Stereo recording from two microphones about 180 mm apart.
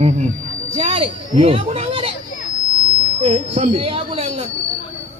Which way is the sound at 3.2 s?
35° right (ahead or behind).